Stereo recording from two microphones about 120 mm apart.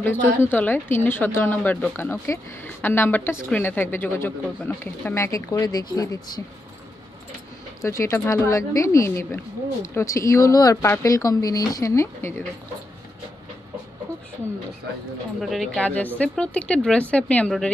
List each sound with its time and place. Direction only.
0.0 s a woman's voice: 15° left (ahead or behind); by 6.4 s 35° left (ahead or behind)
7.8 s speech: 25° left (ahead or behind)
15.4 s speech: centre (ahead or behind)
15.8 s a woman's voice: 15° left (ahead or behind)